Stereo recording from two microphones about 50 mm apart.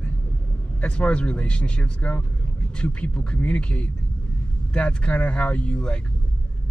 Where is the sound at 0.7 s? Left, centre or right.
Left.